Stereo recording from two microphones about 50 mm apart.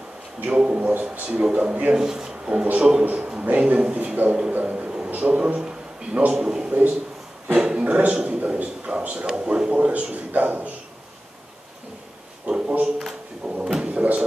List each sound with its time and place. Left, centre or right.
0.5 s a man's voice: right
1.9 s a man's voice: centre
4.6 s a sound: right
5.1 s a man's voice: right
7.4 s dog: right
8.1 s a man's voice: right
12.4 s a sound: right
13.5 s speech: centre
13.8 s speech: right